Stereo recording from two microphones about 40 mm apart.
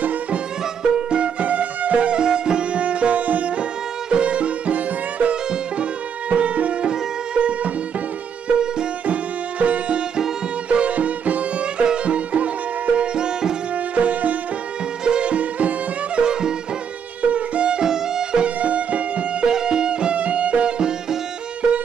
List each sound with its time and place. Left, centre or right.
0.0 s music: right
0.8 s music: right
2.8 s music: right
5.3 s music: right
6.3 s music: right
9.0 s music: right
13.9 s music: right
16.2 s music: centre
17.2 s music: right; by 18.4 s centre
18.4 s music: right
19.4 s music: centre